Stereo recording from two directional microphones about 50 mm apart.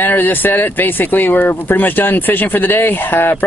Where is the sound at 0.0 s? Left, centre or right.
Left.